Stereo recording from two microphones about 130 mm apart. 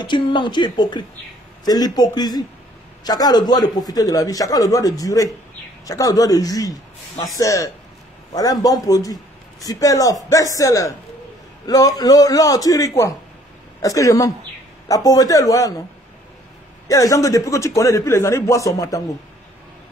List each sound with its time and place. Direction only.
0.0 s speech: 35° left (ahead or behind)
16.8 s speech: 25° left (ahead or behind)